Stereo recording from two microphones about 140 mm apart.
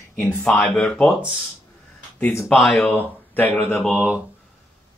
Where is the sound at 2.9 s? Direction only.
15° left (ahead or behind).